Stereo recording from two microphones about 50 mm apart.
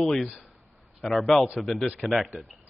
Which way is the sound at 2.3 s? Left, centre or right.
Right.